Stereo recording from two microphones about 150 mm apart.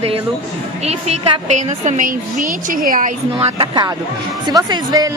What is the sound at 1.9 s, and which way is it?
A woman's voice, 60° right (ahead or behind).